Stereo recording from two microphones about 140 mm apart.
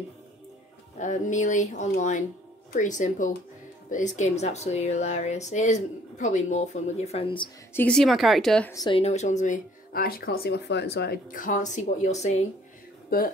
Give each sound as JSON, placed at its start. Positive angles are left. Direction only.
{"t": 0.9, "sound": "speech", "side_deg": 60}
{"t": 7.7, "sound": "speech", "side_deg": 10}
{"t": 8.9, "sound": "speech", "side_deg": 50}
{"t": 11.1, "sound": "speech", "side_deg": 75}